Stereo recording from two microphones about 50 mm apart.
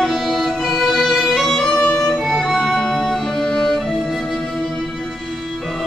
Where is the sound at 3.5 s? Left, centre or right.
Centre.